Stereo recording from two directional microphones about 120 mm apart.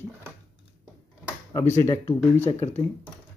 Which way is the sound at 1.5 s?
20° left (ahead or behind).